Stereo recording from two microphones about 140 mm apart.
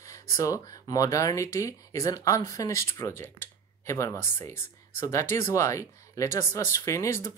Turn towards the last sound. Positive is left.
turn(degrees=20)  # may be behind; listen again after turning